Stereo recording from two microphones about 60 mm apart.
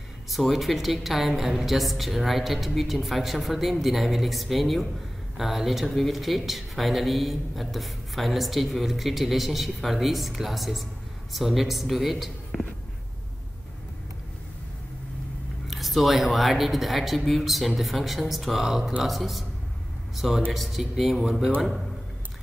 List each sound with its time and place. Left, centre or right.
0.3 s speech: centre
15.6 s speech: centre